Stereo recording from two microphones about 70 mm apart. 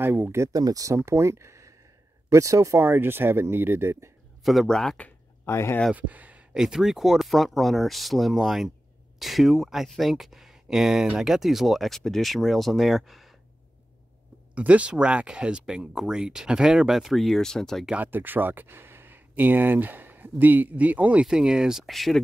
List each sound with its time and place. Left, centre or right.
0.0 s speech: right
0.5 s speech: right
0.9 s speech: right
2.8 s speech: right
4.4 s speech: centre
4.6 s speech: centre
5.4 s speech: left
5.9 s speech: right
6.5 s speech: centre
14.5 s speech: centre
17.9 s speech: right; by 22.2 s centre